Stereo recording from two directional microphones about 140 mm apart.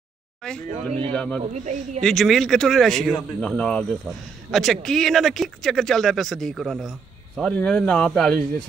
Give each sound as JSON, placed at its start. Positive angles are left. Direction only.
{"t": 0.4, "sound": "a man's voice", "side_deg": 5}
{"t": 1.4, "sound": "a man's voice", "side_deg": -55}
{"t": 2.0, "sound": "speech", "side_deg": 0}